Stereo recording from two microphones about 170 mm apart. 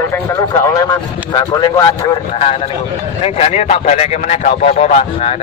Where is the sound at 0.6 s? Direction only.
20° left (ahead or behind); by 5.3 s 40° left (ahead or behind).